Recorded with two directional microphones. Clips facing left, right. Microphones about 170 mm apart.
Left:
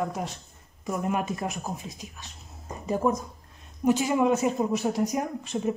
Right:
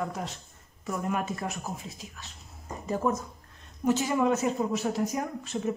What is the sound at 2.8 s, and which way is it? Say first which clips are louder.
Speech: left 3 dB; 15° left (ahead or behind).